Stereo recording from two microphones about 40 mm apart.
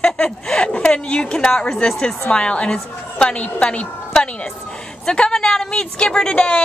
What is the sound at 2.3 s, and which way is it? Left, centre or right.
A woman's voice, left.